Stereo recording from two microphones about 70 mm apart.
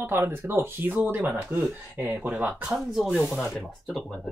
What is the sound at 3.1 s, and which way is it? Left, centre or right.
Speech, centre.